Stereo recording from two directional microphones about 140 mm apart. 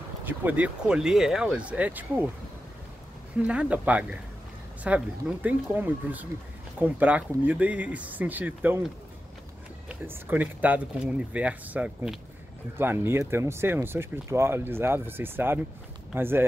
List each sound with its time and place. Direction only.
0.2 s speech: 10° right (ahead or behind)
3.4 s speech: 10° right (ahead or behind)
9.8 s speech: 15° right (ahead or behind)
12.7 s speech: 15° right (ahead or behind)